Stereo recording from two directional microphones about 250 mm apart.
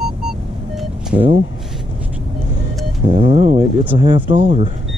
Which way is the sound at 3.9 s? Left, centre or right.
Centre.